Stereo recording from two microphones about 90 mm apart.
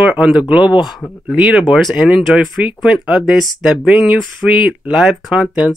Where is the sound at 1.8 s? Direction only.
Centre (ahead or behind).